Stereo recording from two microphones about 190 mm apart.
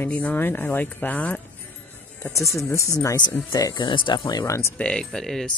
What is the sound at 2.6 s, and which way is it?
Speech, 15° left (ahead or behind).